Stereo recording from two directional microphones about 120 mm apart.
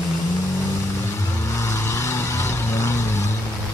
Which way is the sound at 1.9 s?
25° left (ahead or behind).